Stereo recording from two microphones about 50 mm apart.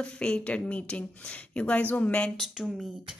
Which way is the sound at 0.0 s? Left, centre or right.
Centre.